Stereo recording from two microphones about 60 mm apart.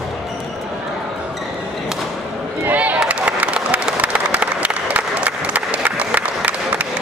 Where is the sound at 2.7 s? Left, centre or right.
Right.